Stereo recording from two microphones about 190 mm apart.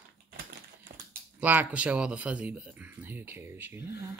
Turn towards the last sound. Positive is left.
turn(degrees=-10)  # may be behind; listen again after turning